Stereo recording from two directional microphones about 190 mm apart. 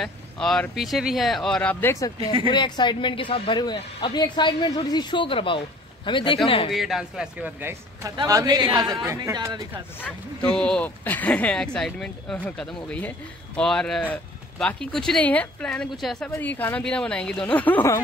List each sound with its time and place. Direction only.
0.0 s a woman's voice: 5° left (ahead or behind); by 6.7 s 25° left (ahead or behind)
6.7 s a man's voice: centre (ahead or behind); by 9.8 s 20° right (ahead or behind)
10.5 s a woman's voice: 5° left (ahead or behind)